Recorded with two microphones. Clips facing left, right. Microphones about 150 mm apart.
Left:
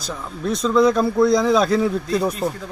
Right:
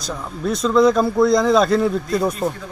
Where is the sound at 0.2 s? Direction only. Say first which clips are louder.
Right 1 dB; centre (ahead or behind).